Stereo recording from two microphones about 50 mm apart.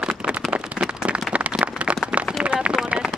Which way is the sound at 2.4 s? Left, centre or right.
Right.